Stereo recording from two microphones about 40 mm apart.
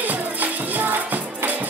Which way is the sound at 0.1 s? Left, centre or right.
Right.